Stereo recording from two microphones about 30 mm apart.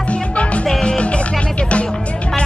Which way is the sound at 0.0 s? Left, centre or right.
Left.